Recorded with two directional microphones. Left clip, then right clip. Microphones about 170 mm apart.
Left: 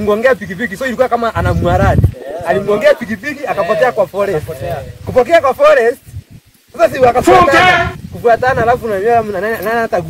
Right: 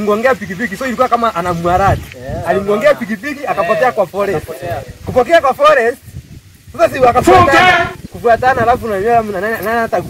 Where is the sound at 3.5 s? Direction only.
5° left (ahead or behind).